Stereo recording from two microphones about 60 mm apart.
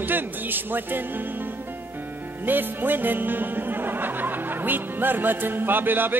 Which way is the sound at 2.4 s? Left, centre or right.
Right.